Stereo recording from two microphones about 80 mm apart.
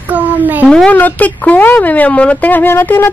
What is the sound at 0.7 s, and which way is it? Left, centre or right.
Speech, centre.